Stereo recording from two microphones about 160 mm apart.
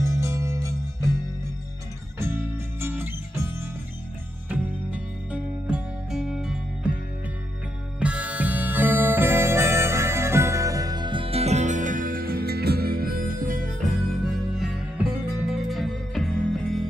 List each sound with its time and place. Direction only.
0.0 s music: 20° right (ahead or behind)
2.1 s music: 15° right (ahead or behind)
8.0 s harmonica: 10° right (ahead or behind); by 13.8 s 60° right (ahead or behind)
14.6 s music: 5° right (ahead or behind)